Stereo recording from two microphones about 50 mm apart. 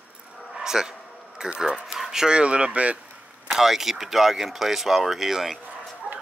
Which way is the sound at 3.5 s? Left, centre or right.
Centre.